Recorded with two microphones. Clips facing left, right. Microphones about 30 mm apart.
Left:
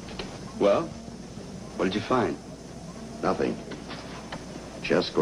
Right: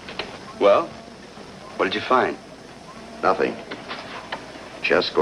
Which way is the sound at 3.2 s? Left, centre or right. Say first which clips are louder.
Right 6 dB; right.